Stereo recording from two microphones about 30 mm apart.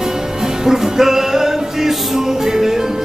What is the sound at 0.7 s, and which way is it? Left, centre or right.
Music, centre.